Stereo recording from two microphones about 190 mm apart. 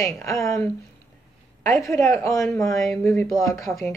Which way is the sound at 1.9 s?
15° left (ahead or behind).